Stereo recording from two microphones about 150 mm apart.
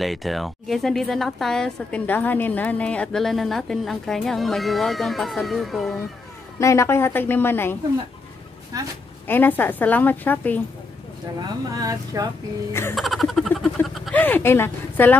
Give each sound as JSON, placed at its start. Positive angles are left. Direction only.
{"t": 0.0, "sound": "a woman's voice", "side_deg": 0}
{"t": 6.6, "sound": "a woman's voice", "side_deg": 20}
{"t": 8.7, "sound": "speech", "side_deg": -25}
{"t": 9.3, "sound": "a woman's voice", "side_deg": 15}
{"t": 11.3, "sound": "speech", "side_deg": -25}
{"t": 12.9, "sound": "music", "side_deg": 0}
{"t": 13.8, "sound": "a sound", "side_deg": 0}
{"t": 14.1, "sound": "a woman's voice", "side_deg": 10}